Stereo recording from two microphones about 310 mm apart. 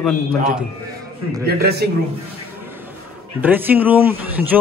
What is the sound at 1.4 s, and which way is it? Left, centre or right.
Speech, right.